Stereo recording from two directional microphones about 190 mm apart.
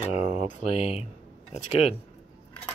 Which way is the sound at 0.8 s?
35° left (ahead or behind).